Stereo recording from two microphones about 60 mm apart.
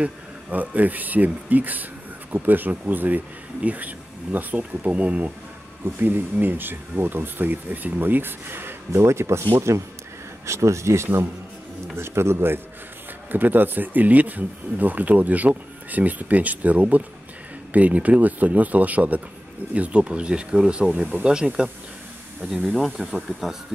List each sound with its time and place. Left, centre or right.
0.0 s speech: right
5.9 s speech: right
10.4 s speech: right
13.3 s speech: right; by 21.6 s centre
22.5 s speech: centre